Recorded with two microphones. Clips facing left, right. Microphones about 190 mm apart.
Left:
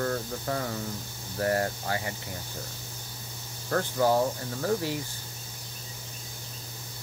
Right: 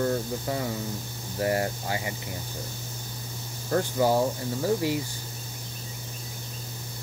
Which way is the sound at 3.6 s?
15° right (ahead or behind).